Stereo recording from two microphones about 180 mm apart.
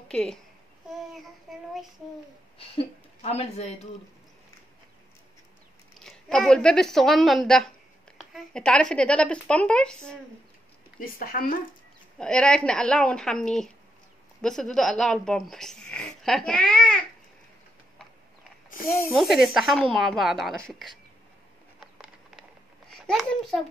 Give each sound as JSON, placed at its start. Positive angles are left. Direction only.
{"t": 0.1, "sound": "a child's voice", "side_deg": 5}
{"t": 1.5, "sound": "child singing", "side_deg": 0}
{"t": 2.6, "sound": "speech", "side_deg": 35}
{"t": 6.0, "sound": "speech", "side_deg": 5}
{"t": 11.0, "sound": "speech", "side_deg": 50}
{"t": 12.2, "sound": "speech", "side_deg": 5}
{"t": 19.1, "sound": "speech", "side_deg": 0}
{"t": 21.7, "sound": "a sound", "side_deg": -5}
{"t": 22.8, "sound": "a child's voice", "side_deg": 0}